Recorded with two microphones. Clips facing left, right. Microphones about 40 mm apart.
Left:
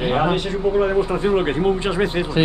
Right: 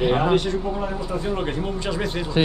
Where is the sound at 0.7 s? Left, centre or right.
Left.